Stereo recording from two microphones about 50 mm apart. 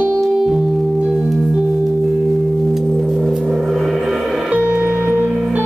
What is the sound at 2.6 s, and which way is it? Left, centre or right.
Singing bowl, centre.